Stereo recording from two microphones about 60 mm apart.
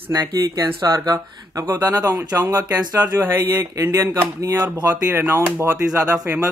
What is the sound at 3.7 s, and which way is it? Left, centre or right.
Speech, right.